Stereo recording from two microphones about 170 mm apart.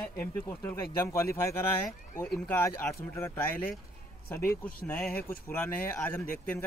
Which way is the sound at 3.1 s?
15° left (ahead or behind).